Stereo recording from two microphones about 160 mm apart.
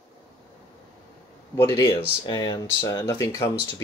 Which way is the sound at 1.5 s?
20° left (ahead or behind).